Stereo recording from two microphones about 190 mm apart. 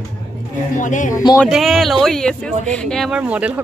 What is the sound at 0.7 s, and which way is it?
Speech, 40° left (ahead or behind).